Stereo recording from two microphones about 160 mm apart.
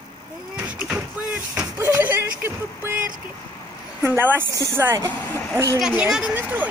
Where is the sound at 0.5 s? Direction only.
5° right (ahead or behind).